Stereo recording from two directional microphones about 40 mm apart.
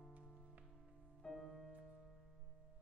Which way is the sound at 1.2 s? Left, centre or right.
Centre.